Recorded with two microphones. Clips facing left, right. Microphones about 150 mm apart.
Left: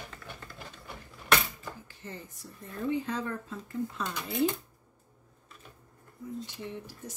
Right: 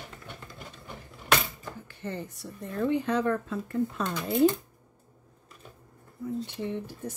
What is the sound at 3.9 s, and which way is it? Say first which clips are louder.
Speech: right 5 dB; 50° right (ahead or behind).